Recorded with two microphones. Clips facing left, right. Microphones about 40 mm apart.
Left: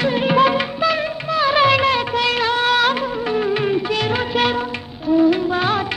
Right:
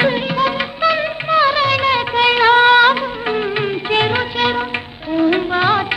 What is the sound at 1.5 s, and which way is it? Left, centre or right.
Music, centre.